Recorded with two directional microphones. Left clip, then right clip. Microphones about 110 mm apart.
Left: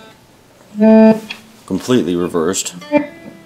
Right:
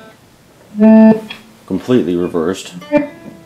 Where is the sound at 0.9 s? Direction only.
25° left (ahead or behind).